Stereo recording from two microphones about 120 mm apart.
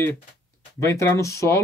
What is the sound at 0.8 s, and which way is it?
Speech, 25° left (ahead or behind).